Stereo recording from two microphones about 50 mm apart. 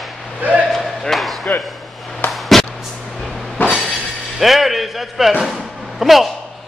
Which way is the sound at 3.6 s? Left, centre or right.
Left.